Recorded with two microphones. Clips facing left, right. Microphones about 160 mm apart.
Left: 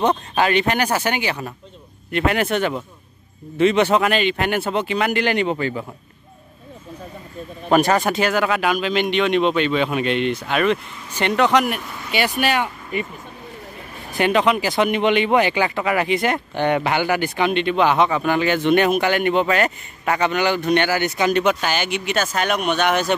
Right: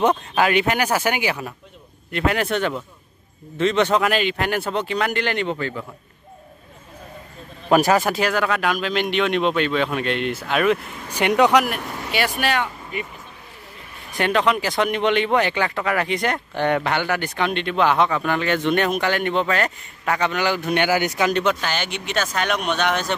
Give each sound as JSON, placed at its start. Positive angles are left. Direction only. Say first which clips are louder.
{"t": 0.4, "sound": "speech", "louder": "left 1 dB", "side_deg": -5}
{"t": 7.7, "sound": "speech", "louder": "even", "side_deg": -5}
{"t": 11.6, "sound": "speech", "louder": "left 1 dB", "side_deg": 0}
{"t": 14.1, "sound": "speech", "louder": "left 2 dB", "side_deg": 5}
{"t": 21.2, "sound": "speech", "louder": "left 2 dB", "side_deg": 5}